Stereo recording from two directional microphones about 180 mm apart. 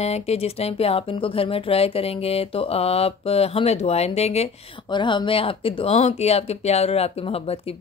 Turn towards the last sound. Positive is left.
turn(degrees=35)  # may be behind; listen again after turning